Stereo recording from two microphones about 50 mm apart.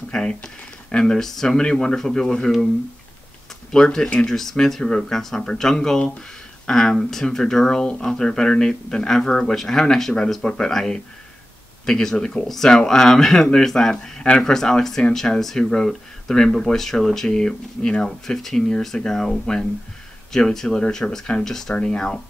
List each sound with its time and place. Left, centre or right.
0.1 s speech: centre
3.7 s speech: centre
9.3 s speech: centre
9.6 s speech: centre